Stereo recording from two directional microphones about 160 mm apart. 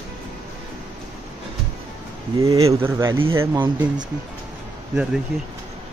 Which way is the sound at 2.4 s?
20° right (ahead or behind).